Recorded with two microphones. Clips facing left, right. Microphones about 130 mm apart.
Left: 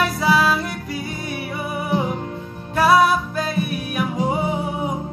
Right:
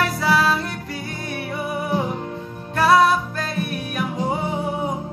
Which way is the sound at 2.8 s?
10° left (ahead or behind).